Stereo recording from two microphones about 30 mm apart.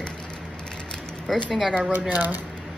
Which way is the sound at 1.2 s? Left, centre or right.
Centre.